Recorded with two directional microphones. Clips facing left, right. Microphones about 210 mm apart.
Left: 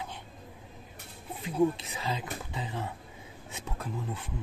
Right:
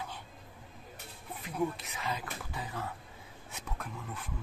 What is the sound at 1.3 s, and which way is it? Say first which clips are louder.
Speech: left 7 dB; 25° left (ahead or behind).